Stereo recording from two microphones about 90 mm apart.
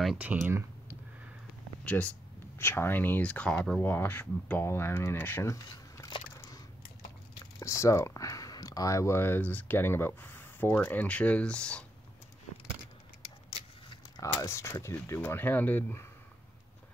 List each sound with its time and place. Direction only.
0.3 s speech: 10° right (ahead or behind)
1.9 s speech: 15° left (ahead or behind)
2.6 s speech: 25° left (ahead or behind); by 3.8 s 10° left (ahead or behind)
3.8 s speech: 20° left (ahead or behind)
6.0 s a sound: 50° left (ahead or behind)
7.6 s speech: 35° left (ahead or behind); by 11.8 s 10° left (ahead or behind)
13.5 s vehicle: 60° left (ahead or behind)
14.2 s speech: 35° left (ahead or behind)